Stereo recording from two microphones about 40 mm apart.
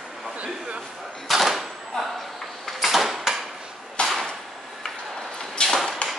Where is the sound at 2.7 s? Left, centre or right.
Centre.